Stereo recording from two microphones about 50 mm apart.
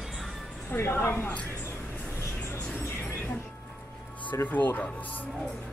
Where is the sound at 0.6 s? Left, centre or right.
Left.